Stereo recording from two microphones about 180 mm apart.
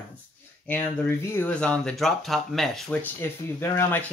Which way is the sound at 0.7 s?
10° left (ahead or behind).